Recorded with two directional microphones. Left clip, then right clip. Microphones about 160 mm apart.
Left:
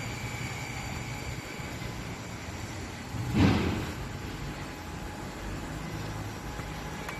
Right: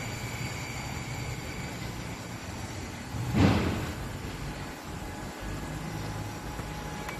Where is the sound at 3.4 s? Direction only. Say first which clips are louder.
Even; 45° right (ahead or behind).